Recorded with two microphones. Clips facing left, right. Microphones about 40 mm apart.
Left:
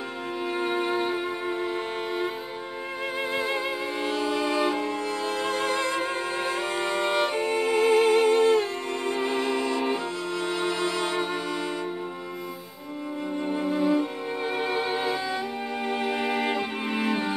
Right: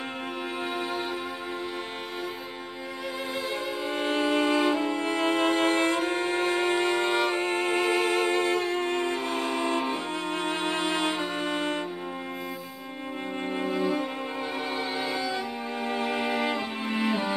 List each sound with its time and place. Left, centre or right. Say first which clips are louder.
0.7 s music: left 6 dB; left
4.0 s music: right 3 dB; right
13.5 s music: left 3 dB; right
14.7 s music: left 3 dB; centre
16.2 s music: left 1 dB; centre
16.4 s music: left 2 dB; centre